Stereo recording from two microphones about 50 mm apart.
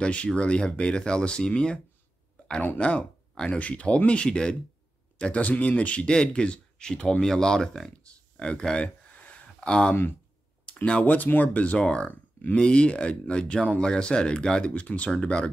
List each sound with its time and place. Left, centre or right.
0.0 s speech: left
2.4 s a sound: left
2.8 s speech: centre
5.2 s speech: left
11.8 s speech: centre